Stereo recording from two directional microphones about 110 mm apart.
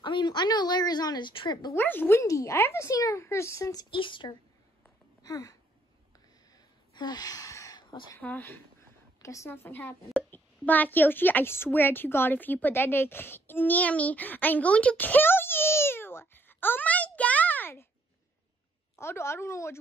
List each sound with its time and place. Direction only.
0.0 s a woman's voice: 45° left (ahead or behind)
1.7 s speech: 20° left (ahead or behind)
3.9 s speech: 50° left (ahead or behind)
5.2 s speech: 30° left (ahead or behind)
6.1 s a sound: 35° left (ahead or behind)
8.2 s speech: 15° left (ahead or behind)
9.2 s a woman's voice: 25° left (ahead or behind)
18.9 s speech: 25° left (ahead or behind)